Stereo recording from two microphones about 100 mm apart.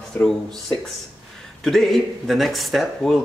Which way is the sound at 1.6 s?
5° left (ahead or behind).